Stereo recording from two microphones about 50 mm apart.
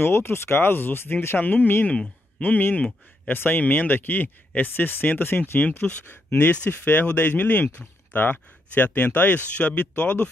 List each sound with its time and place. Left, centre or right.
0.0 s speech: left
3.3 s speech: left